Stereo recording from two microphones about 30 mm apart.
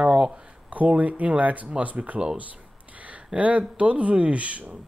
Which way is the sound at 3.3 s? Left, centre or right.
Right.